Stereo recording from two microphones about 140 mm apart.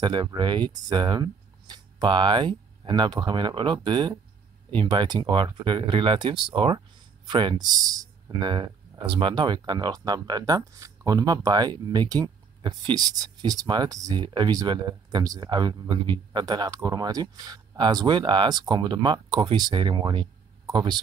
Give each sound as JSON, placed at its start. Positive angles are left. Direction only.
{"t": 0.0, "sound": "speech", "side_deg": -30}